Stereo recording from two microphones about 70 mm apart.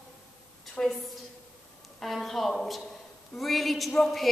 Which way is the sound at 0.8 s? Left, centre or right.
Centre.